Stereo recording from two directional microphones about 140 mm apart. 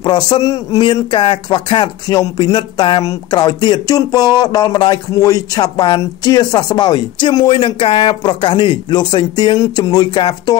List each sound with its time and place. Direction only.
0.0 s a man's voice: 30° left (ahead or behind)